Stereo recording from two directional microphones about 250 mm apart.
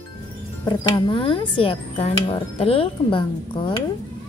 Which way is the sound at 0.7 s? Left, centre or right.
Centre.